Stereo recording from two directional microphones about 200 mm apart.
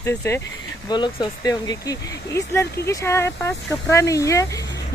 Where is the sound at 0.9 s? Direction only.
20° left (ahead or behind).